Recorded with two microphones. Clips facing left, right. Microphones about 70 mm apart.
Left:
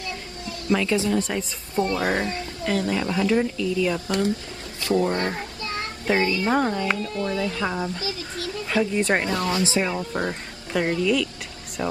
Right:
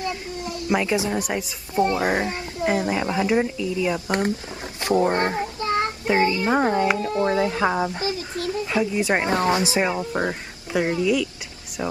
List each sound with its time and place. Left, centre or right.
0.0 s a sound: right
1.9 s speech: centre
5.6 s child singing: right
6.0 s a child's voice: right
8.6 s a woman's voice: centre
9.2 s speech: right
9.9 s speech: centre
11.8 s speech: centre